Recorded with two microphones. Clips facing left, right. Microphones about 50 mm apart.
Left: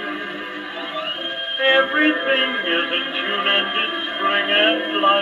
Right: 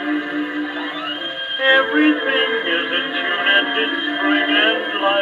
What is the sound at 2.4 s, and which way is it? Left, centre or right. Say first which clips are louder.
Music: right 2 dB; left.